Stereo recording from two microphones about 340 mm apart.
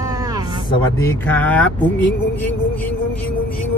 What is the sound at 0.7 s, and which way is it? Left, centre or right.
Speech, centre.